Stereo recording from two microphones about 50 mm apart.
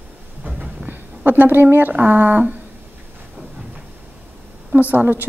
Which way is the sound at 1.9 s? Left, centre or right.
Right.